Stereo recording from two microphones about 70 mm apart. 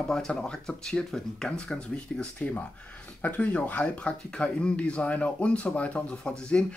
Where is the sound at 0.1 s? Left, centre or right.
Centre.